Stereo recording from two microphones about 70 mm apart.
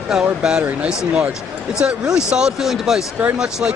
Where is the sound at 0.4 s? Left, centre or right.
Centre.